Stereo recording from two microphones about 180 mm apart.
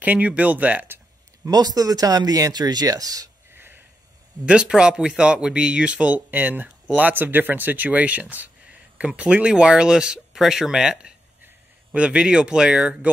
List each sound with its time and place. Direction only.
0.0 s speech: 10° right (ahead or behind)